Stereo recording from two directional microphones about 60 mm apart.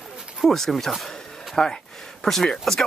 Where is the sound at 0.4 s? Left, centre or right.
Centre.